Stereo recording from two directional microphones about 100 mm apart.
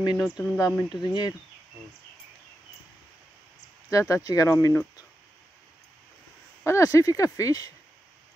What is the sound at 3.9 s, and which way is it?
Speech, 30° left (ahead or behind).